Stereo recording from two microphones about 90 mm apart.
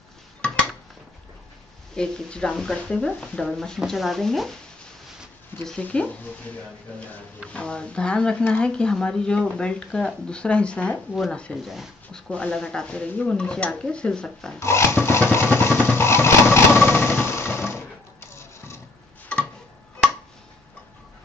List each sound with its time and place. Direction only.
2.0 s speech: 10° left (ahead or behind)
5.8 s speech: 15° left (ahead or behind)
14.6 s filing: 30° left (ahead or behind)
15.3 s vehicle: 25° left (ahead or behind)